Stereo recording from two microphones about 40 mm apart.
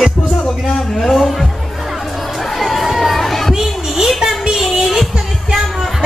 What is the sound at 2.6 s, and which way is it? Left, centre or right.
Crowd, centre.